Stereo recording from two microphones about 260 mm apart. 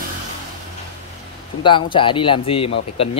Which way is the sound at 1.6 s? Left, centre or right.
Centre.